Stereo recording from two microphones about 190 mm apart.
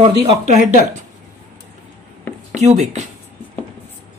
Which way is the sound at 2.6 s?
35° right (ahead or behind).